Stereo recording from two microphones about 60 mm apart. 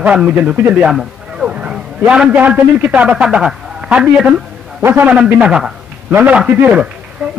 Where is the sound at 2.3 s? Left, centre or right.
Right.